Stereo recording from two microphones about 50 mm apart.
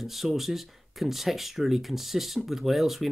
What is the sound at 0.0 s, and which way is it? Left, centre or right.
Speech, centre.